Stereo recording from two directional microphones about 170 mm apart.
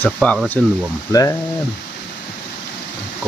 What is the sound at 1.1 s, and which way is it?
Speech, 20° left (ahead or behind).